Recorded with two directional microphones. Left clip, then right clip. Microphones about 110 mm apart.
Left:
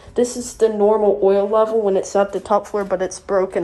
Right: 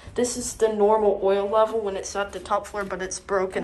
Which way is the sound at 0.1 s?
25° left (ahead or behind).